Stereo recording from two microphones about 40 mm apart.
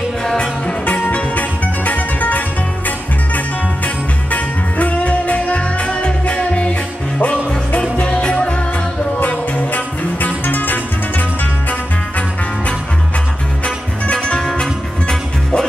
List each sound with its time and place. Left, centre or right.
0.2 s music: left
1.0 s music: left
9.2 s music: left
14.0 s music: left